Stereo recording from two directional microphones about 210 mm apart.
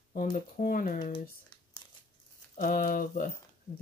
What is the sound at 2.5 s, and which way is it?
Speech, 40° left (ahead or behind).